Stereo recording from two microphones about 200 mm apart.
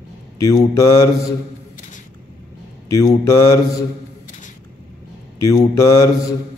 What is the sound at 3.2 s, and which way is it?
Mantra, 15° left (ahead or behind).